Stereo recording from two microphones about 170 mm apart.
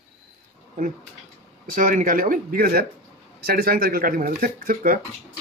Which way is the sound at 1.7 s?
55° right (ahead or behind).